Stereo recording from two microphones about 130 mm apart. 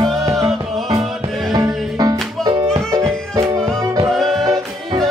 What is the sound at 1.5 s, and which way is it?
Music, 30° right (ahead or behind).